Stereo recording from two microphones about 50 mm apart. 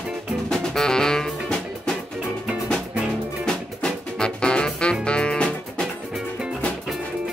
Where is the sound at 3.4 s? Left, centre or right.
Centre.